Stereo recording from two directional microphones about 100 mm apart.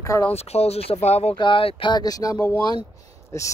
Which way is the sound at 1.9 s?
40° left (ahead or behind).